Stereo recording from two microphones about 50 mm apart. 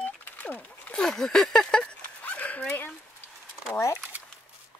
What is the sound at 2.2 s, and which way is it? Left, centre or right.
Dog, left.